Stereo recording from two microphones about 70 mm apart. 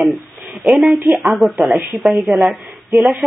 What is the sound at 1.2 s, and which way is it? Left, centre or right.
A woman's voice, centre.